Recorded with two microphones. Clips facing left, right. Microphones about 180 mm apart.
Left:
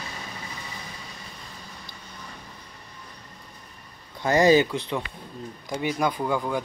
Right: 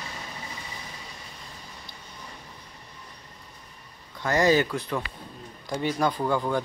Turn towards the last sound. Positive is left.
turn(degrees=10)  # may be behind; listen again after turning